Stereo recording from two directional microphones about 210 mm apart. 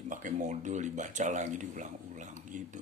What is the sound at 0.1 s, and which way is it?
A man's voice, 35° right (ahead or behind).